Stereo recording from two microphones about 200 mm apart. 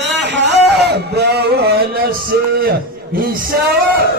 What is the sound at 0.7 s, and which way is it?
Music, 55° right (ahead or behind).